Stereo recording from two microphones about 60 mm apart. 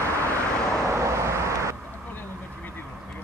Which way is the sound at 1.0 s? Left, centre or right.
Right.